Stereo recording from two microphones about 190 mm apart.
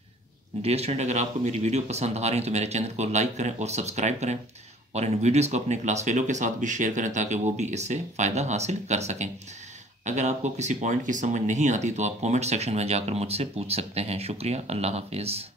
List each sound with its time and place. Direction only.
0.6 s speech: 35° right (ahead or behind)